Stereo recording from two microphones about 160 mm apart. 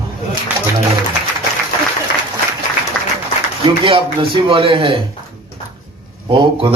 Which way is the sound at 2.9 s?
5° left (ahead or behind).